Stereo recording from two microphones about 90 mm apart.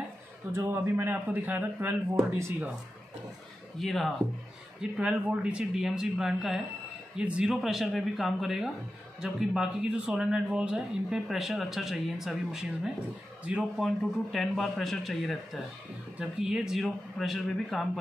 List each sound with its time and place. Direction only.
0.5 s speech: 25° right (ahead or behind)
3.8 s a man's voice: centre (ahead or behind)
4.9 s a man's voice: 10° right (ahead or behind)
13.7 s a man's voice: centre (ahead or behind)